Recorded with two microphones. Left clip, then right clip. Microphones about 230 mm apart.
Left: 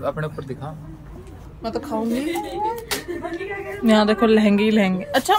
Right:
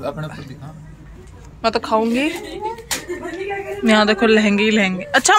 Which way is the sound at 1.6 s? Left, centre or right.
Centre.